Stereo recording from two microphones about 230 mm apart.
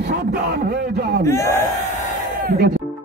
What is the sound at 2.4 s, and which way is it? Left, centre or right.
Speech, right.